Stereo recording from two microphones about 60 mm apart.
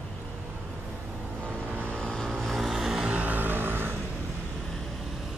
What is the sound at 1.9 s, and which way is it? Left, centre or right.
Vehicle, centre.